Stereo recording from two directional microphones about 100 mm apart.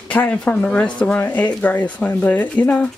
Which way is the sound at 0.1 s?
15° left (ahead or behind).